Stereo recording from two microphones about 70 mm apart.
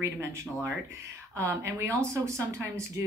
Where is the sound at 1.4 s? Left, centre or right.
Right.